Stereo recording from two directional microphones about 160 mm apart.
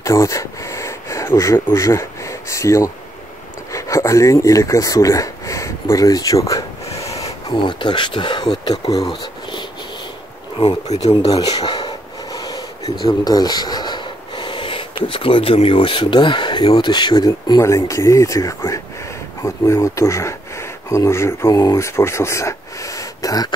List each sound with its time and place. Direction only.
0.0 s speech: 20° left (ahead or behind)
9.1 s a sound: 30° left (ahead or behind)
10.9 s speech: 45° left (ahead or behind)
11.4 s a sound: 25° left (ahead or behind)
13.0 s snort: 25° left (ahead or behind)
15.0 s speech: 35° left (ahead or behind)